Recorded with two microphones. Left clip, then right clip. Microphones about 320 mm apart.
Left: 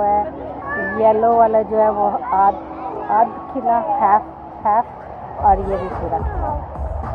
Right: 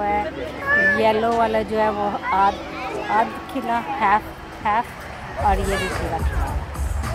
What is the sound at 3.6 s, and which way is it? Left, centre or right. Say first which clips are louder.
Speech: left 5 dB; centre.